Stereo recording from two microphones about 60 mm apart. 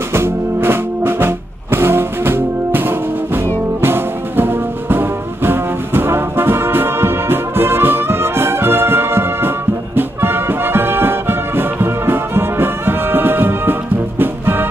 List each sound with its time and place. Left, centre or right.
0.1 s music: right